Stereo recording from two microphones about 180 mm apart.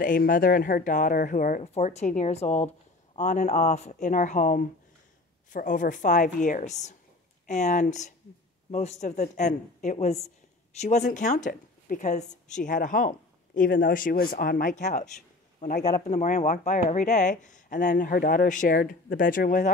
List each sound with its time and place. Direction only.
0.0 s a woman's voice: 50° left (ahead or behind)
16.1 s speech: 40° left (ahead or behind)